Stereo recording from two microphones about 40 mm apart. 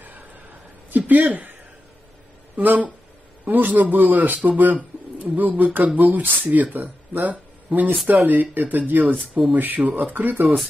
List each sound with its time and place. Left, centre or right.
0.8 s speech: right
2.5 s speech: right
9.4 s speech: centre
9.9 s speech: right